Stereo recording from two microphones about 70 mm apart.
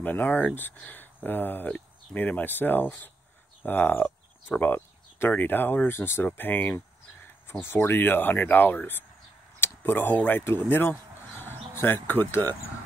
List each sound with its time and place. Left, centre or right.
0.0 s speech: left